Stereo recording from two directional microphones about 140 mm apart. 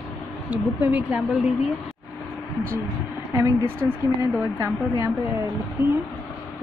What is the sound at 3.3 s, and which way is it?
A woman's voice, 20° right (ahead or behind).